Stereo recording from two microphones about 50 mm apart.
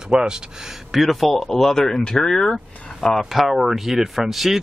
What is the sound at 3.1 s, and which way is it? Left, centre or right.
Speech, centre.